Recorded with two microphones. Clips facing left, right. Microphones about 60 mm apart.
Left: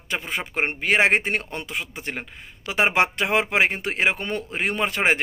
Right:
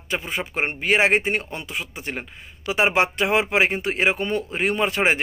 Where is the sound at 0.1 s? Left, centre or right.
Left.